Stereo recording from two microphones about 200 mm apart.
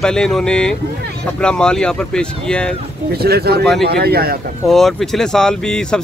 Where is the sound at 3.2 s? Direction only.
50° right (ahead or behind).